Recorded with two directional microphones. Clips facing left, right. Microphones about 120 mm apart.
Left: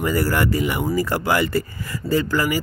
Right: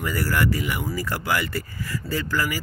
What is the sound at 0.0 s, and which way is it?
Speech, 25° left (ahead or behind).